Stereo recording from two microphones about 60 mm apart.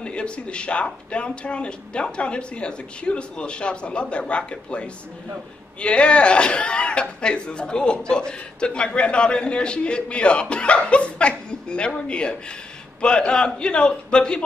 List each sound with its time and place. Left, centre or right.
0.0 s speech: centre